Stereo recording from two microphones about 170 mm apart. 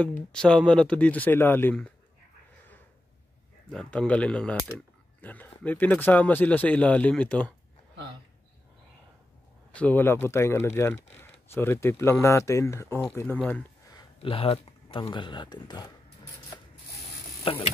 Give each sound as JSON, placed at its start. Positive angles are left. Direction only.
{"t": 0.3, "sound": "speech", "side_deg": 5}
{"t": 3.7, "sound": "speech", "side_deg": 5}
{"t": 9.8, "sound": "speech", "side_deg": 10}
{"t": 13.9, "sound": "speech", "side_deg": 35}
{"t": 17.4, "sound": "speech", "side_deg": 35}